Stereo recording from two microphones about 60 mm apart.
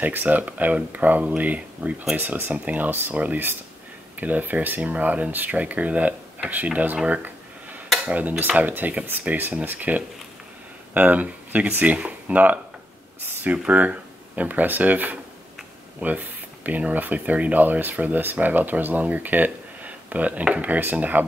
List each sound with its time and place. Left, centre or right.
0.0 s speech: right
8.1 s speech: right
13.7 s speech: right